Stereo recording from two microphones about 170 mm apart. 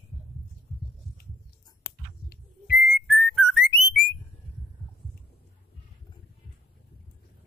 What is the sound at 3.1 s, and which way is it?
Whistling, centre (ahead or behind).